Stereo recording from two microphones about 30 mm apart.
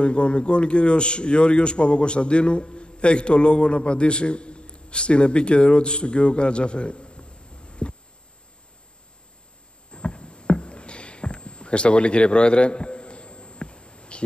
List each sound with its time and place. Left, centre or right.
0.0 s a man's voice: left
9.9 s rowboat: left